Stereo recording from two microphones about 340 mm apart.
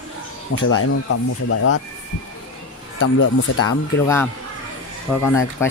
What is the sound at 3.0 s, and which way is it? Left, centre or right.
Speech, left.